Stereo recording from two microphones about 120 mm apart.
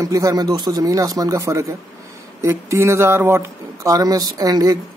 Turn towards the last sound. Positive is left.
turn(degrees=-30)  # may be behind; listen again after turning